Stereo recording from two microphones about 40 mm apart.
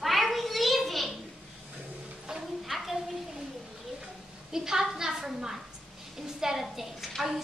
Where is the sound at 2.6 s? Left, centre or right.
Centre.